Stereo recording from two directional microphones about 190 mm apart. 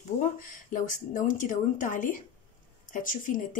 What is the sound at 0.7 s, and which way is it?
Speech, 45° left (ahead or behind).